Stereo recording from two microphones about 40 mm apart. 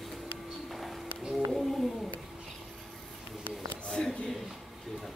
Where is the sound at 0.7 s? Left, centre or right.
Centre.